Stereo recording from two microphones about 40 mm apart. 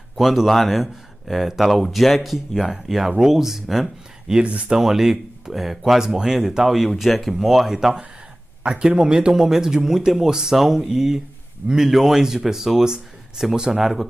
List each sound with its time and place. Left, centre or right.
0.2 s speech: centre
4.3 s speech: right
4.6 s speech: centre
7.0 s speech: centre